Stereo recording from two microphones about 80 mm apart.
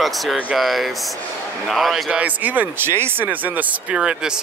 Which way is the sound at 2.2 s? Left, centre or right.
Right.